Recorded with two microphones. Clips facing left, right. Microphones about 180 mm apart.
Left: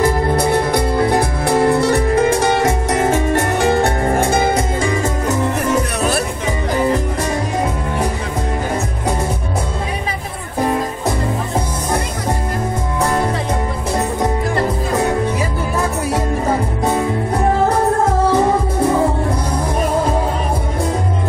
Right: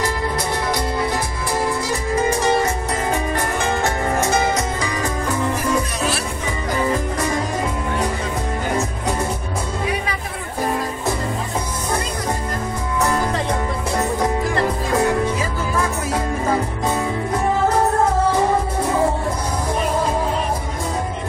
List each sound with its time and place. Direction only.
0.0 s music: 60° left (ahead or behind)
4.3 s music: 30° left (ahead or behind)
5.6 s music: 55° left (ahead or behind)